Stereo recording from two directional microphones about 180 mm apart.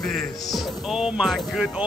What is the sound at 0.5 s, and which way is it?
Speech, 5° right (ahead or behind).